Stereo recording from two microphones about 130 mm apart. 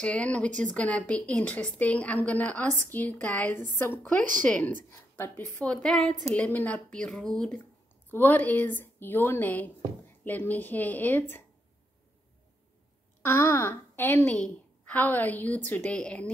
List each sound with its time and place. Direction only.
0.0 s a woman's voice: 10° left (ahead or behind)
13.2 s a woman's voice: 20° left (ahead or behind)